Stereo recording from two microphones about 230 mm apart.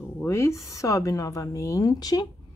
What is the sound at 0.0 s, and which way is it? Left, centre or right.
Speech, centre.